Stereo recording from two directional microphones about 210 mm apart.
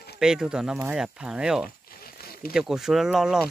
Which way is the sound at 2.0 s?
45° left (ahead or behind).